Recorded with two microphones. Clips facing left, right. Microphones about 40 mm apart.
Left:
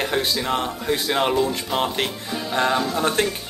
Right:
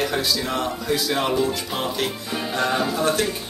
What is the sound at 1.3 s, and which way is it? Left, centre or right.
Speech, centre.